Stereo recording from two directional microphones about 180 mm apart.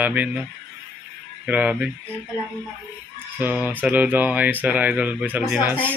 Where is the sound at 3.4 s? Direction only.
10° right (ahead or behind).